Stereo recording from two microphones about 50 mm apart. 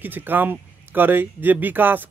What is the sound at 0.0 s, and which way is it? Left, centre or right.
Speech, right.